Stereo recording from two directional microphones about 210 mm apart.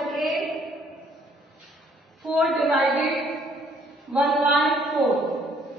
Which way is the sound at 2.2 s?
Centre (ahead or behind).